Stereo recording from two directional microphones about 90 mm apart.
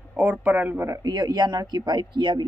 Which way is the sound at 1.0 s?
55° right (ahead or behind).